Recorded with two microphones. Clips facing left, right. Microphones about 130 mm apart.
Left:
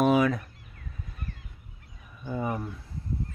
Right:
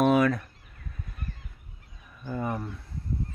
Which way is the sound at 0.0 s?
5° left (ahead or behind).